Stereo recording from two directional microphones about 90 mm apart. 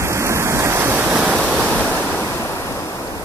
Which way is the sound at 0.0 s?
30° right (ahead or behind).